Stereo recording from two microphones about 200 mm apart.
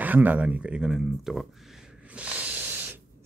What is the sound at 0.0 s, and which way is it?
Speech, 10° right (ahead or behind).